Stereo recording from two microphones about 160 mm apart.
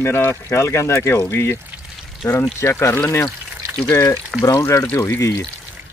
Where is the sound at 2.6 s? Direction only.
15° left (ahead or behind).